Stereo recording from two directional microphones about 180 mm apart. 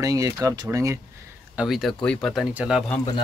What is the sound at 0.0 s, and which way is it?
Speech, 20° right (ahead or behind).